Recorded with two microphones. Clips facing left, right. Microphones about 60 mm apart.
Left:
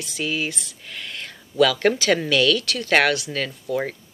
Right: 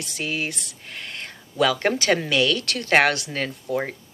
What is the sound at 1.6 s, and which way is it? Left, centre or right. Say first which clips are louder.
Speech: left 3 dB; right.